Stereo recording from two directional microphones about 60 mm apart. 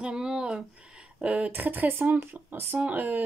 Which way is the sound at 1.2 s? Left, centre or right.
Right.